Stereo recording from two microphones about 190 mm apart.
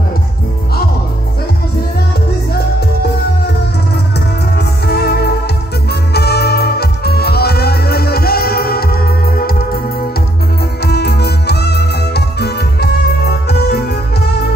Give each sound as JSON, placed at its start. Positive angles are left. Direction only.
{"t": 4.6, "sound": "music", "side_deg": 55}
{"t": 10.8, "sound": "music", "side_deg": 60}